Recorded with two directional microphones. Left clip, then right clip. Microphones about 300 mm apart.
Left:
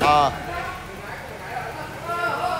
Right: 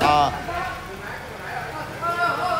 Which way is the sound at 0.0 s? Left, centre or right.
Centre.